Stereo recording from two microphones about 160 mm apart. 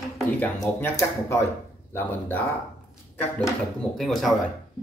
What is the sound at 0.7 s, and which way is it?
Speech, 15° left (ahead or behind).